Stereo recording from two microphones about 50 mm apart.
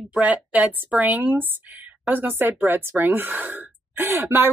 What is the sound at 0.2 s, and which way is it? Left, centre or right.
A woman's voice, right.